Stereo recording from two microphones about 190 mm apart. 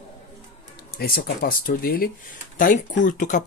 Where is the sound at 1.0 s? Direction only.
50° left (ahead or behind).